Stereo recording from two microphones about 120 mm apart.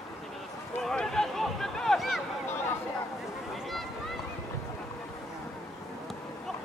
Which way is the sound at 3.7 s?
Centre (ahead or behind).